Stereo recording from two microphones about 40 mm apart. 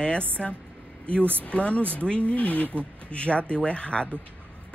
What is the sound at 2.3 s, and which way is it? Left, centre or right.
Speech, left.